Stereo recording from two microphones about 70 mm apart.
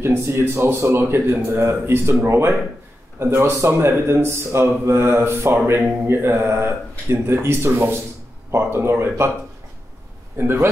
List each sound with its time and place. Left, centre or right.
0.0 s speech: right
10.3 s speech: right